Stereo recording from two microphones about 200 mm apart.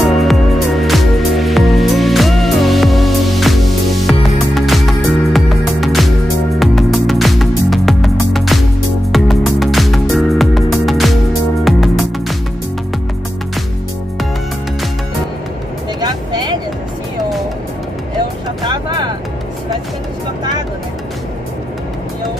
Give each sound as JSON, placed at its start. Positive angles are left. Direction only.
{"t": 0.0, "sound": "music", "side_deg": 0}
{"t": 16.0, "sound": "vehicle", "side_deg": -20}